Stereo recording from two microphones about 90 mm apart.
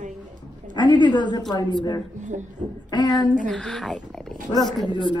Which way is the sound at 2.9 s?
55° left (ahead or behind).